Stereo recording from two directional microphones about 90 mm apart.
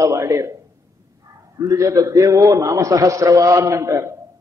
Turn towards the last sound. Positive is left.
turn(degrees=-35)  # may be behind; listen again after turning